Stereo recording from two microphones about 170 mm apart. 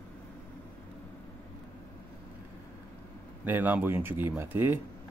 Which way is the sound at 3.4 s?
10° right (ahead or behind).